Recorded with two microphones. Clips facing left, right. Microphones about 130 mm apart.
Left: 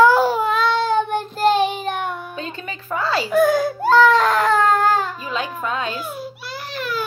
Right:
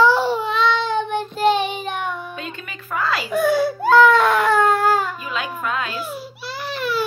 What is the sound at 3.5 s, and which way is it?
Whimper, 45° left (ahead or behind).